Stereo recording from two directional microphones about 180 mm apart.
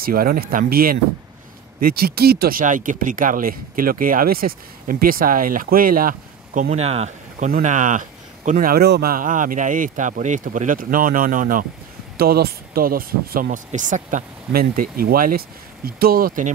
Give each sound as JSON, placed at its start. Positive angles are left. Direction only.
{"t": 0.0, "sound": "speech", "side_deg": -55}
{"t": 12.2, "sound": "speech", "side_deg": -60}